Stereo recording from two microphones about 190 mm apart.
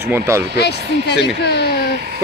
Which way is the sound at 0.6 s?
60° left (ahead or behind).